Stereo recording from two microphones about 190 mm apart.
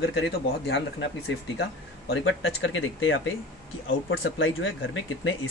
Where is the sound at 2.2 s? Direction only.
90° left.